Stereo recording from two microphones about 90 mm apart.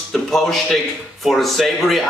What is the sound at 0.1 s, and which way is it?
A man's voice, 5° left (ahead or behind).